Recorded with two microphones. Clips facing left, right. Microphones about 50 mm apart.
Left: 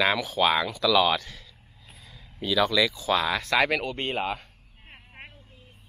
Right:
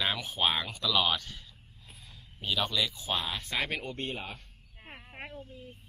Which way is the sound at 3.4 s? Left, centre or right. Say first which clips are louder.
Left 10 dB; left.